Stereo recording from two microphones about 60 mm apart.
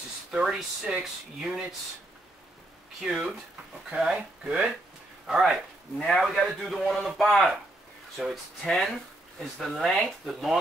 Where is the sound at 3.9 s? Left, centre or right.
Centre.